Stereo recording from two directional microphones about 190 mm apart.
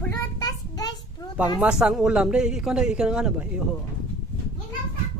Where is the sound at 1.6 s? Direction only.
5° right (ahead or behind).